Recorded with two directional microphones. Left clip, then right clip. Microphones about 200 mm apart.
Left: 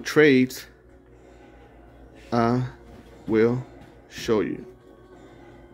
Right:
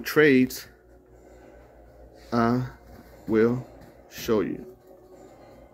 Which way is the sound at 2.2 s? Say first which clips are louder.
Left 2 dB; 15° left (ahead or behind).